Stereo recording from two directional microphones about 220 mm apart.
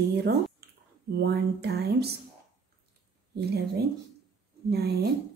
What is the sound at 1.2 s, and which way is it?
Speech, 50° right (ahead or behind).